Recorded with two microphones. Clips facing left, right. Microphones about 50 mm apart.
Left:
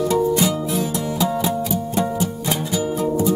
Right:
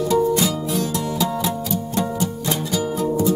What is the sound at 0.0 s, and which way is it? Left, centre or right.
Music, centre.